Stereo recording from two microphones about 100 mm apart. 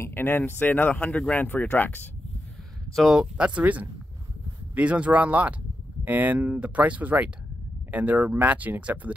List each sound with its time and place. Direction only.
0.0 s speech: 20° left (ahead or behind)
2.9 s speech: centre (ahead or behind)
3.2 s speech: 10° right (ahead or behind)